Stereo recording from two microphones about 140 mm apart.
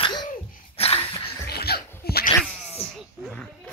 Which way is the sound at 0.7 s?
45° left (ahead or behind).